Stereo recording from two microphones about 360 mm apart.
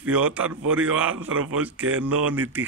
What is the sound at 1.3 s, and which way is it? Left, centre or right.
Speech, right.